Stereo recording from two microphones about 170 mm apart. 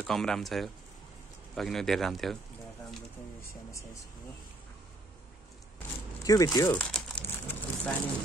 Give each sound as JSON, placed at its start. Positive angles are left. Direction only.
{"t": 0.0, "sound": "speech", "side_deg": 5}
{"t": 6.2, "sound": "speech", "side_deg": 20}
{"t": 6.8, "sound": "crumpling", "side_deg": 5}